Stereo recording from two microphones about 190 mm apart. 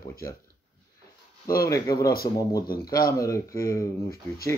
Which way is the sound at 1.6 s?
15° left (ahead or behind).